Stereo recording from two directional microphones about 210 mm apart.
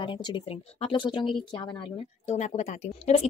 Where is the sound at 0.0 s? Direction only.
25° left (ahead or behind).